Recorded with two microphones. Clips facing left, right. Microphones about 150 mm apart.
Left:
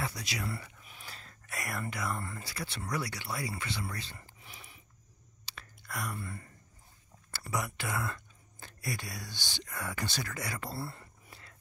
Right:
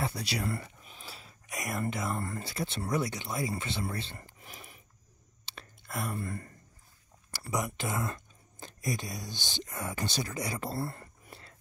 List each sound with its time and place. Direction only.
0.0 s a sound: 30° right (ahead or behind)
1.0 s wheeze: 10° right (ahead or behind)
1.5 s a sound: 20° right (ahead or behind)
1.8 s speech: 25° right (ahead or behind)
4.2 s a sound: 45° right (ahead or behind)
5.4 s chewing: 25° right (ahead or behind)
6.1 s speech: 45° right (ahead or behind)
7.2 s speech: 15° right (ahead or behind)
10.7 s speech: 45° right (ahead or behind)